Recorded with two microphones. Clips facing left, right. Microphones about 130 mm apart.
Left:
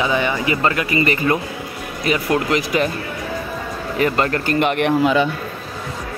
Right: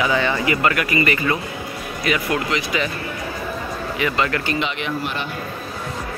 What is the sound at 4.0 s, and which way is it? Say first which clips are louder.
Speech: left 4 dB; 45° left (ahead or behind).